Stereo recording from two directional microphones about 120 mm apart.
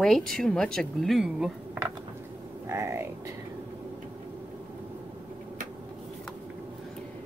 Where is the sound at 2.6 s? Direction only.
25° right (ahead or behind).